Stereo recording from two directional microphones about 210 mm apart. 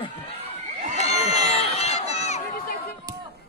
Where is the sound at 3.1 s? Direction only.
20° right (ahead or behind).